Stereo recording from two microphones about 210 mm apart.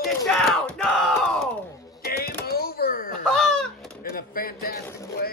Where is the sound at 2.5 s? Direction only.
45° left (ahead or behind).